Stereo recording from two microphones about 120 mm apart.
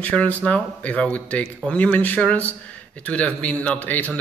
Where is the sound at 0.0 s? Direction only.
10° left (ahead or behind).